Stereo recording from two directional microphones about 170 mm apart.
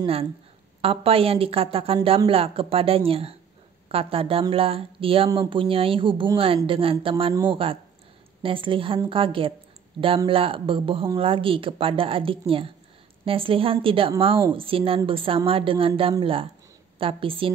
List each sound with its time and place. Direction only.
0.0 s speech: 35° right (ahead or behind)